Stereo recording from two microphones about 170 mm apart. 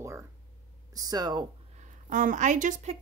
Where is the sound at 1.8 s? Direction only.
50° right (ahead or behind).